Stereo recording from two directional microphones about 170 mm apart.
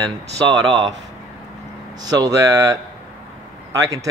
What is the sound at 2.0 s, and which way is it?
Speech, 20° right (ahead or behind).